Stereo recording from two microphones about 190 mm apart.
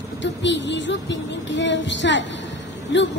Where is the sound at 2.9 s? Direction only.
75° left (ahead or behind).